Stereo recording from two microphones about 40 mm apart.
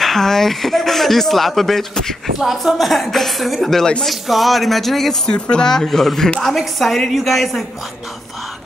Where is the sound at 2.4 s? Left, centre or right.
Centre.